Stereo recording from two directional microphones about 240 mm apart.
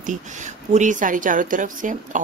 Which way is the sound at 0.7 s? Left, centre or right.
Right.